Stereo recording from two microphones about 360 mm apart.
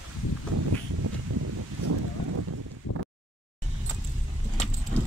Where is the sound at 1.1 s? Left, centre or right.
Right.